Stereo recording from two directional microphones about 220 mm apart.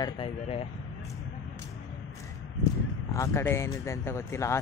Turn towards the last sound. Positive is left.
turn(degrees=15)  # may be behind; listen again after turning